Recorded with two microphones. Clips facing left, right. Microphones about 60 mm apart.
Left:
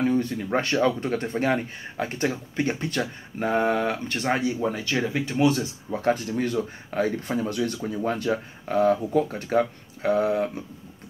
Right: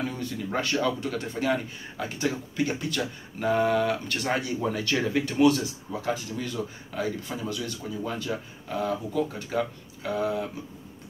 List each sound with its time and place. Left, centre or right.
0.0 s speech: left
6.0 s a man's voice: left